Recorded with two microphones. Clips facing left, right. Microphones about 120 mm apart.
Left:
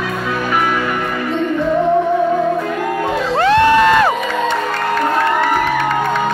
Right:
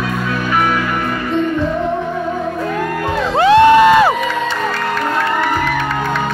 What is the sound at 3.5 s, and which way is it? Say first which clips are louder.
Music: right 4 dB; 20° right (ahead or behind).